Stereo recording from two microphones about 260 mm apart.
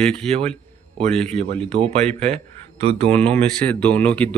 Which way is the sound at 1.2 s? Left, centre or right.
Right.